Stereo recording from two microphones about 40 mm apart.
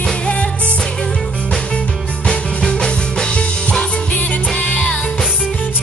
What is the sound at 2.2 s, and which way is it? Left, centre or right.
Music, centre.